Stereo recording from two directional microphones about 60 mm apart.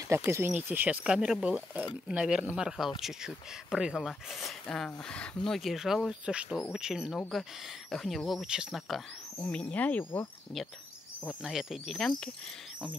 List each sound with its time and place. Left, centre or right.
0.1 s speech: right
0.6 s speech: right
0.8 s speech: centre
4.8 s speech: centre
5.5 s speech: centre
6.2 s speech: centre
7.2 s speech: centre
9.5 s speech: left
11.4 s speech: centre
12.0 s speech: centre